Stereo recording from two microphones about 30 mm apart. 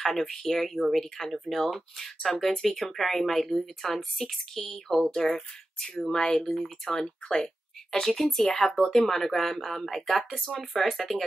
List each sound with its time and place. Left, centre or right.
0.0 s speech: centre
6.4 s speech: centre